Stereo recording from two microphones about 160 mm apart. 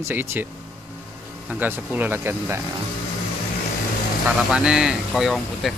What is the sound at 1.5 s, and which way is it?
Speech, 10° right (ahead or behind).